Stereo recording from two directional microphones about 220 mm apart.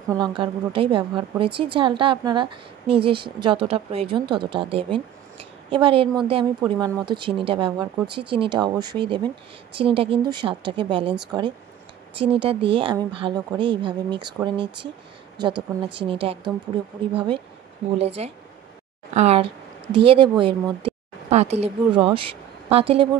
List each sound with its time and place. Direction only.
0.1 s a woman's voice: 20° right (ahead or behind)
16.0 s a woman's voice: 25° right (ahead or behind)